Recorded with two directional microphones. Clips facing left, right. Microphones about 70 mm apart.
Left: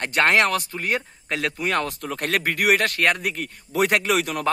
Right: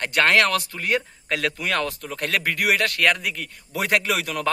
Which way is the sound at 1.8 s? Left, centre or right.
Left.